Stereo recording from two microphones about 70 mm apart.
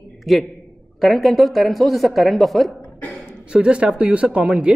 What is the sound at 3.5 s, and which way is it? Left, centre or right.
Speech, centre.